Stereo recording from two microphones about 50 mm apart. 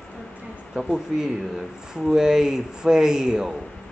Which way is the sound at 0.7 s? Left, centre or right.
Centre.